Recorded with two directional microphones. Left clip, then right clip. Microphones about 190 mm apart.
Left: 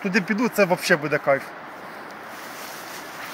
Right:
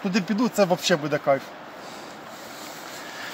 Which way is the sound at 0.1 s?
25° left (ahead or behind).